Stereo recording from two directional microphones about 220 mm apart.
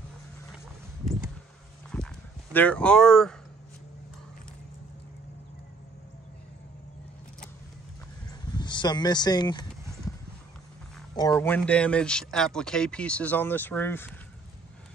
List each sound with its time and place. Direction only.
1.9 s horse: 5° left (ahead or behind)
8.5 s speech: 20° left (ahead or behind)
11.1 s speech: 15° left (ahead or behind)